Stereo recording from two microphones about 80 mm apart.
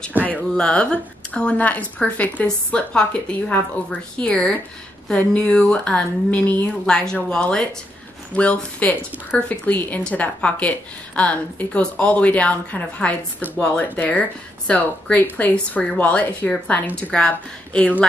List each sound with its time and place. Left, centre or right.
0.2 s speech: right
0.6 s a woman's voice: centre